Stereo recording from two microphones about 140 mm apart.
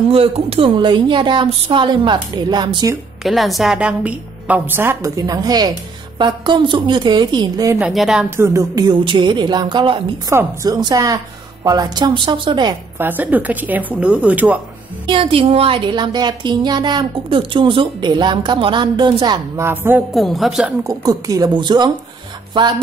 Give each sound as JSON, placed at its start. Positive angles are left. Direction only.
{"t": 0.1, "sound": "speech", "side_deg": -45}
{"t": 3.3, "sound": "a woman's voice", "side_deg": 0}
{"t": 7.8, "sound": "a woman's voice", "side_deg": 0}
{"t": 8.4, "sound": "speech", "side_deg": -25}
{"t": 10.3, "sound": "speech", "side_deg": -25}
{"t": 13.0, "sound": "a woman's voice", "side_deg": -15}
{"t": 15.0, "sound": "speech", "side_deg": -40}
{"t": 19.6, "sound": "a woman's voice", "side_deg": -15}
{"t": 20.1, "sound": "a woman's voice", "side_deg": 0}
{"t": 20.8, "sound": "speech", "side_deg": -25}